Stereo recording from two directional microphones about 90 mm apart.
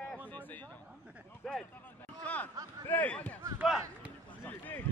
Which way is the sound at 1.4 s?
5° left (ahead or behind).